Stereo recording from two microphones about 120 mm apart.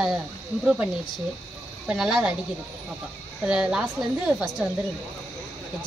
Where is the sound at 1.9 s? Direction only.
5° right (ahead or behind).